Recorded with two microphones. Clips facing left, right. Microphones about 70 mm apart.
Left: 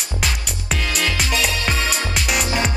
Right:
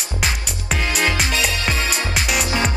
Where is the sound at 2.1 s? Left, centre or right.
Centre.